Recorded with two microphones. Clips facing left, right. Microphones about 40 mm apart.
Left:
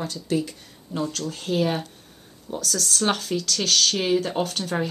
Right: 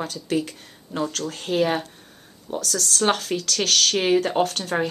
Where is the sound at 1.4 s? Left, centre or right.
Right.